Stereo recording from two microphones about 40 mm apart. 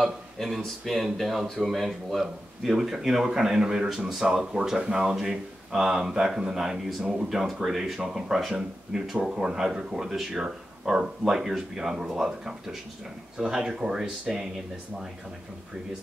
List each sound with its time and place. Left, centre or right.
0.0 s speech: centre